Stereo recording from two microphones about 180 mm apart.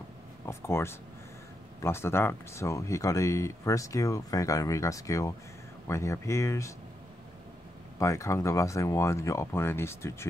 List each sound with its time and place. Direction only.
0.5 s speech: 15° left (ahead or behind)
8.0 s speech: 15° left (ahead or behind)